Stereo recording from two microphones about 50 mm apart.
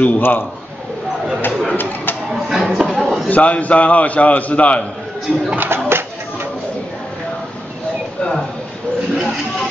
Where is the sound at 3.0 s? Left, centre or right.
Centre.